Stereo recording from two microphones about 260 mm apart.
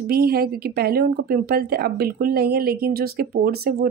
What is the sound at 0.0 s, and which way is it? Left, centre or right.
A woman's voice, right.